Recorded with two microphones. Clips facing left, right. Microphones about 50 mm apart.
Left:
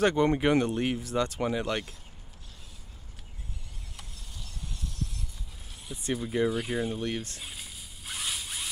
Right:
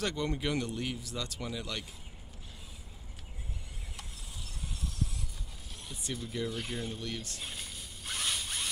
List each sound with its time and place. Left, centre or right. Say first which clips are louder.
0.0 s speech: left 10 dB; left
3.9 s a sound: even; centre
5.9 s speech: left 7 dB; centre
6.2 s speech: left 9 dB; left
6.5 s speech: left 7 dB; centre
7.0 s speech: left 7 dB; left
7.3 s zipper: even; centre